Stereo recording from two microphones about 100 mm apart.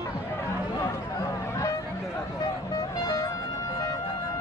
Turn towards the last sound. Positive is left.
turn(degrees=35)  # may be behind; listen again after turning